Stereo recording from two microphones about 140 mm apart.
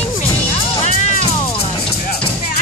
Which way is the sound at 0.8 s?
60° left (ahead or behind).